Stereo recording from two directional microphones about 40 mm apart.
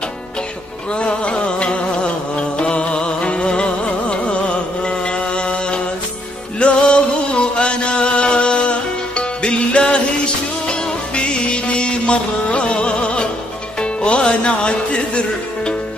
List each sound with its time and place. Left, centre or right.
0.9 s music: left